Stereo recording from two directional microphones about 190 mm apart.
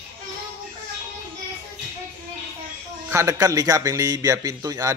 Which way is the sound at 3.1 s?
15° right (ahead or behind).